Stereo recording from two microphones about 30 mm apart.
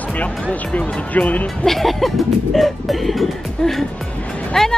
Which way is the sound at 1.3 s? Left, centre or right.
Left.